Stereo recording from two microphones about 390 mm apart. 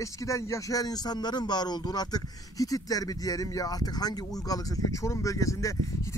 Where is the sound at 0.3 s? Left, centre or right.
Centre.